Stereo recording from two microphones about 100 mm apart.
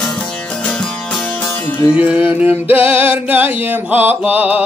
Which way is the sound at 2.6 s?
70° left (ahead or behind).